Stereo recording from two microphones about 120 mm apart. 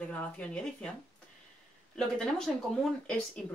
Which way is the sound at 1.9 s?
5° left (ahead or behind).